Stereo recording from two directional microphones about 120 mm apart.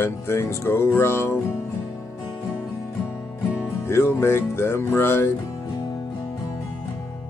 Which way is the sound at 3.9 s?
20° left (ahead or behind).